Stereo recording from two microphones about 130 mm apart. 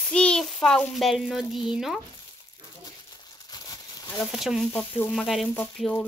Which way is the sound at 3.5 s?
30° left (ahead or behind).